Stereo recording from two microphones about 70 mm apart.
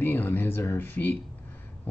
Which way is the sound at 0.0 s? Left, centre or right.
Left.